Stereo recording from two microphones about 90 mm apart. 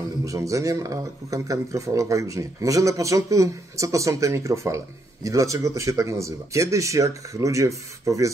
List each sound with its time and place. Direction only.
0.2 s speech: 40° right (ahead or behind)